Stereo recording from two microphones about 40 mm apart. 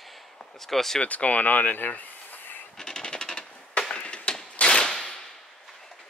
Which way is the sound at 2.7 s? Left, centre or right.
Centre.